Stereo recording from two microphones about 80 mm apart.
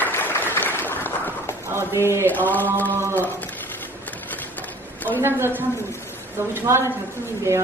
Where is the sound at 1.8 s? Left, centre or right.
Right.